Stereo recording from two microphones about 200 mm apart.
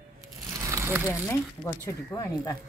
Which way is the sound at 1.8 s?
20° left (ahead or behind).